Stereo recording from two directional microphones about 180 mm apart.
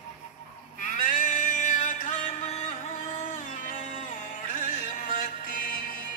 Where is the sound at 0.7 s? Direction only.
45° left (ahead or behind).